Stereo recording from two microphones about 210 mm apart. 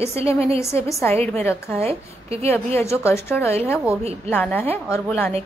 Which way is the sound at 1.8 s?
30° right (ahead or behind).